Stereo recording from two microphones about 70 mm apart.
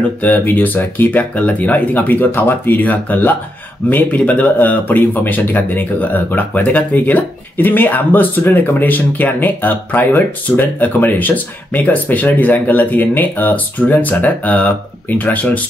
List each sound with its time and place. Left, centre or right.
0.2 s speech: left